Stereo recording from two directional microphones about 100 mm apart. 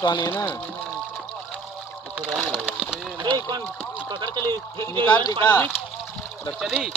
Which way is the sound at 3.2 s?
45° right (ahead or behind).